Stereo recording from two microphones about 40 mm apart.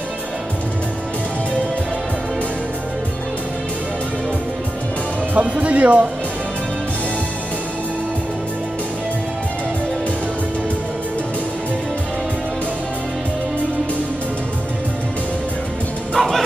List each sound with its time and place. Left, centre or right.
5.4 s speech: right
16.2 s bow-wow: centre